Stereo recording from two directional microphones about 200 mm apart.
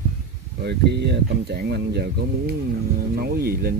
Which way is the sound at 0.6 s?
55° right (ahead or behind).